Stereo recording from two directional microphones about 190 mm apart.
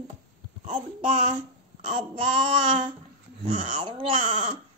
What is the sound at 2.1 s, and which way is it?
Child singing, 25° right (ahead or behind).